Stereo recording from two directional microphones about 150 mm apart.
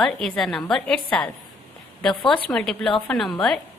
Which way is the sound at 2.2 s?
35° left (ahead or behind).